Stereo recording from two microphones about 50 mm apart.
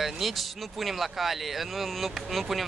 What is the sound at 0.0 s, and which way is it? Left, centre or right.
Speech, centre.